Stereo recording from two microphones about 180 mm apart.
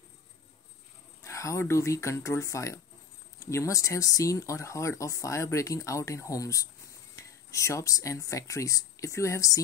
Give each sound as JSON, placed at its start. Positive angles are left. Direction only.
{"t": 1.2, "sound": "speech", "side_deg": 15}